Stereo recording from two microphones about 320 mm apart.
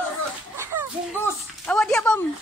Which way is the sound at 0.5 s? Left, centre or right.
Centre.